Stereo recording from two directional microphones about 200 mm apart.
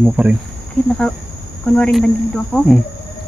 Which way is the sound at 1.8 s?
Centre (ahead or behind).